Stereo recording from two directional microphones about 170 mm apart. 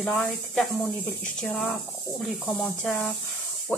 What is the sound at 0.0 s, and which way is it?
Speech, centre (ahead or behind).